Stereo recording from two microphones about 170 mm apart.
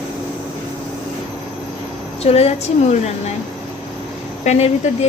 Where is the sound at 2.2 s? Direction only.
35° left (ahead or behind).